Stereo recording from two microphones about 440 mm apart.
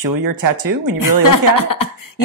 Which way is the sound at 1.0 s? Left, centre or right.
Left.